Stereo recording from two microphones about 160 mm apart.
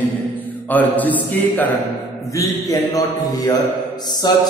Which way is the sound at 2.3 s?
20° left (ahead or behind).